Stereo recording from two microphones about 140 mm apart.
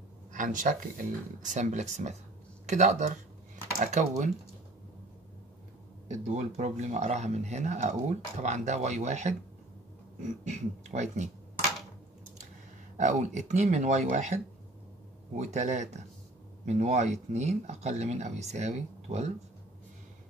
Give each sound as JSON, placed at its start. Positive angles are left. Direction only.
{"t": 0.3, "sound": "speech", "side_deg": -65}
{"t": 6.0, "sound": "speech", "side_deg": -55}
{"t": 10.4, "sound": "speech", "side_deg": -55}
{"t": 12.9, "sound": "speech", "side_deg": -60}